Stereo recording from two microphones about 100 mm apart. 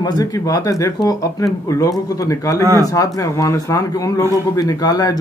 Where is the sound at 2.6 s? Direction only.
30° right (ahead or behind).